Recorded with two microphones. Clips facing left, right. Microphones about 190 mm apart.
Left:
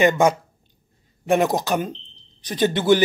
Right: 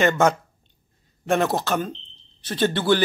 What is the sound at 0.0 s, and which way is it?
A man's voice, 10° left (ahead or behind).